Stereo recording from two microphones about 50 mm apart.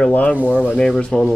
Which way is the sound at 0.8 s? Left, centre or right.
Centre.